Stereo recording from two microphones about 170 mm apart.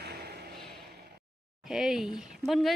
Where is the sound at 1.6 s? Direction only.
Centre (ahead or behind).